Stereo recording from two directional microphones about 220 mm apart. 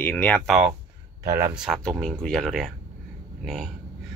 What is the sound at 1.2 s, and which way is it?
Speech, 10° right (ahead or behind).